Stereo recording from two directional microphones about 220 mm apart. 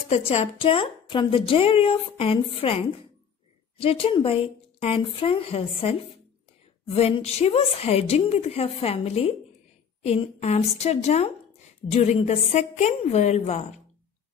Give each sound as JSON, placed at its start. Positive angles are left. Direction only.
{"t": 0.1, "sound": "a woman's voice", "side_deg": 25}
{"t": 7.0, "sound": "a woman's voice", "side_deg": 25}